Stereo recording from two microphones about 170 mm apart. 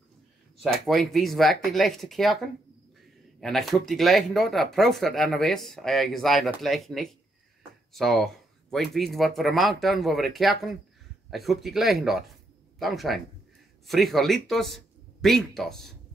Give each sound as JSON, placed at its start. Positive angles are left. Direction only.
{"t": 0.7, "sound": "speech", "side_deg": 0}